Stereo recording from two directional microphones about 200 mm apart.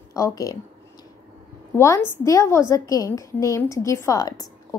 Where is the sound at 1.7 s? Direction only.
15° left (ahead or behind).